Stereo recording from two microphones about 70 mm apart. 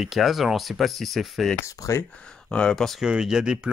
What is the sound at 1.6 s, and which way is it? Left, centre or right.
Speech, left.